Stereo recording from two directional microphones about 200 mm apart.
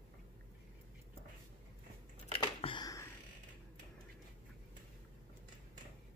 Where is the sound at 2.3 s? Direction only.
25° left (ahead or behind).